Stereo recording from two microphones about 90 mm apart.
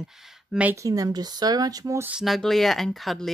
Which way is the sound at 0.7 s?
40° right (ahead or behind).